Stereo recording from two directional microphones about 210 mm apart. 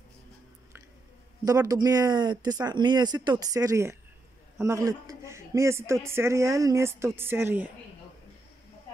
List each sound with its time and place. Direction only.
1.4 s speech: 15° right (ahead or behind)